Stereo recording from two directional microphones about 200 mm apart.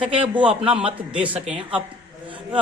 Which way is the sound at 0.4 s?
5° right (ahead or behind).